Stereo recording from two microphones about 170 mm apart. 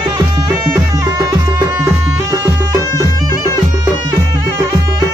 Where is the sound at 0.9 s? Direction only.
20° right (ahead or behind).